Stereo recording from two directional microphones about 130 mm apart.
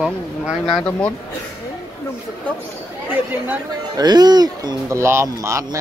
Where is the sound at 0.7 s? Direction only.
10° left (ahead or behind).